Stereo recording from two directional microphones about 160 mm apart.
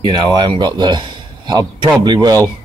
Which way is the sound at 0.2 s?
25° right (ahead or behind).